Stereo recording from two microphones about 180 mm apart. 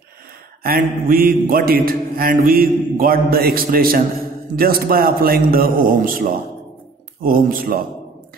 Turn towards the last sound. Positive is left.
turn(degrees=-55)  # may be behind; listen again after turning